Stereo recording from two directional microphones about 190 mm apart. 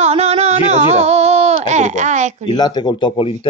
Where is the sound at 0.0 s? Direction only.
35° right (ahead or behind).